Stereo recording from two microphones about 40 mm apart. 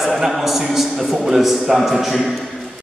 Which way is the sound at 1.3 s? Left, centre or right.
Centre.